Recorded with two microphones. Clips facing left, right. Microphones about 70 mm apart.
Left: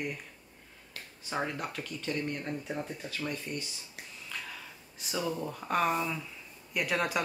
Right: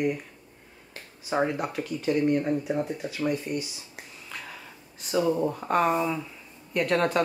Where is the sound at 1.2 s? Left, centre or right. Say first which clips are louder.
Right 8 dB; centre.